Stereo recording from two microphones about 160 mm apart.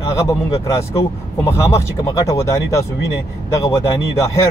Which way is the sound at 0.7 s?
15° left (ahead or behind).